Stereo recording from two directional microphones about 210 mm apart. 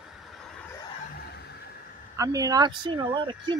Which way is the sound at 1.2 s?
50° left (ahead or behind).